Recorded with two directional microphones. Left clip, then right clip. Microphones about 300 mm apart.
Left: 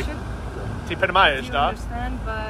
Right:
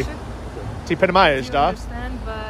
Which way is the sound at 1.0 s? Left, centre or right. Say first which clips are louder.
Right 2 dB; right.